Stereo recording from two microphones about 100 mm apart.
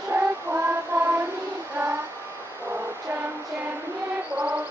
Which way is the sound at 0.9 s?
30° right (ahead or behind).